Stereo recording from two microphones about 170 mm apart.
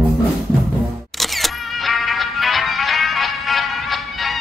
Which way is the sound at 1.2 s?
Centre (ahead or behind).